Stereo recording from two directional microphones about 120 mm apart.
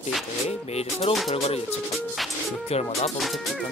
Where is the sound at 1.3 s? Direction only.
55° left (ahead or behind).